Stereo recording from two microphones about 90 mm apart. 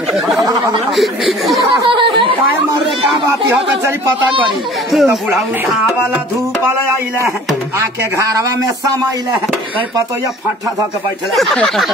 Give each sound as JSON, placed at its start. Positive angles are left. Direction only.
{"t": 0.1, "sound": "a sound", "side_deg": 0}
{"t": 0.9, "sound": "speech", "side_deg": 0}
{"t": 1.9, "sound": "a sound", "side_deg": -70}
{"t": 4.9, "sound": "speech", "side_deg": 0}
{"t": 6.6, "sound": "speech", "side_deg": -30}
{"t": 8.2, "sound": "speech", "side_deg": -40}